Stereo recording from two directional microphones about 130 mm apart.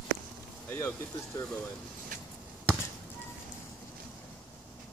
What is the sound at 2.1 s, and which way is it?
Basketball bounce, 80° right.